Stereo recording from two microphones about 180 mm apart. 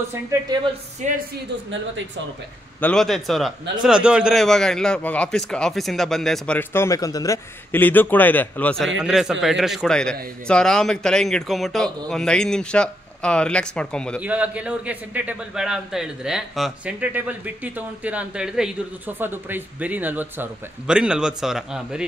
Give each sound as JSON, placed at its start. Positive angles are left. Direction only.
{"t": 0.1, "sound": "a man's voice", "side_deg": -15}
{"t": 1.0, "sound": "a woman's voice", "side_deg": -40}
{"t": 2.8, "sound": "a man's voice", "side_deg": 5}
{"t": 14.2, "sound": "a man's voice", "side_deg": -10}